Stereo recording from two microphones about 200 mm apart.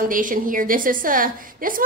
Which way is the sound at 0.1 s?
40° right (ahead or behind).